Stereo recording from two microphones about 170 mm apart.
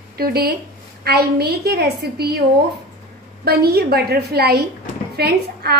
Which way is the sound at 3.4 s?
70° right (ahead or behind).